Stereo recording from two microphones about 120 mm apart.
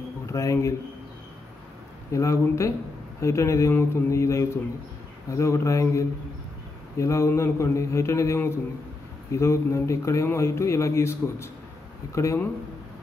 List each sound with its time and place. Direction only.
0.3 s speech: 25° left (ahead or behind)
2.1 s speech: 25° left (ahead or behind)